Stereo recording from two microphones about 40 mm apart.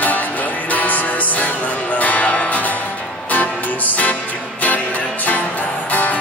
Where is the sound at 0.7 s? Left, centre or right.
Left.